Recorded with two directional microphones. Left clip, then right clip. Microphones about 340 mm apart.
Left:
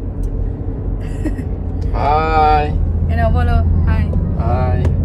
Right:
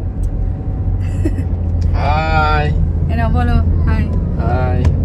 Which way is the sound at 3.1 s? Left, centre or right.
Centre.